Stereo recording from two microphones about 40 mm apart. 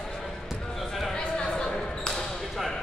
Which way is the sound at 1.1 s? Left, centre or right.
Centre.